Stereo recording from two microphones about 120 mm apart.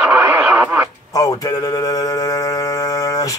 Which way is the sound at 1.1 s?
30° left (ahead or behind).